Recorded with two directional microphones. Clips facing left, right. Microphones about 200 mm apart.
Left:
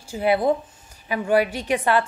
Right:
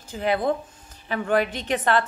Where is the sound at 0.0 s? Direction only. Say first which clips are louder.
Left 3 dB; 10° left (ahead or behind).